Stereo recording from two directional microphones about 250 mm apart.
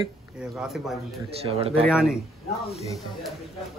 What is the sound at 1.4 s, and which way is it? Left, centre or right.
Speech, right.